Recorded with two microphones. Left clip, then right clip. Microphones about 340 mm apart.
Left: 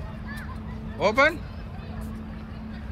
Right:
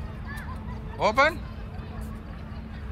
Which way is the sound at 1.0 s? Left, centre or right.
Centre.